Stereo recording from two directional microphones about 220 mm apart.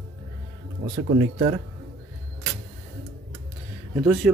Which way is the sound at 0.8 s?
30° right (ahead or behind).